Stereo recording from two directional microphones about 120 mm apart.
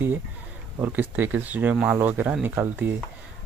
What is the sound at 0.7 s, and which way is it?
Speech, 15° right (ahead or behind).